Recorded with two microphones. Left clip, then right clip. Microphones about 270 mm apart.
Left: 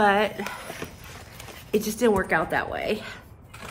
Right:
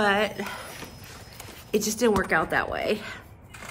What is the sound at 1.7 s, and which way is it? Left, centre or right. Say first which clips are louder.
Speech: left 1 dB; centre.